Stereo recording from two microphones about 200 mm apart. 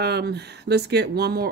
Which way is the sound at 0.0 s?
55° right (ahead or behind).